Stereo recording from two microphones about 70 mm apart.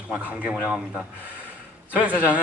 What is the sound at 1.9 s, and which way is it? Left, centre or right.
Speech, right.